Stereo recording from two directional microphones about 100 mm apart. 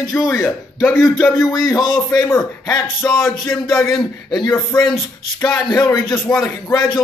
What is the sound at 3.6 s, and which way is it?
Speech, 5° left (ahead or behind).